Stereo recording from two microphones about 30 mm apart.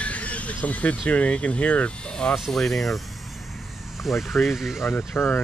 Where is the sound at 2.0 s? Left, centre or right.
Left.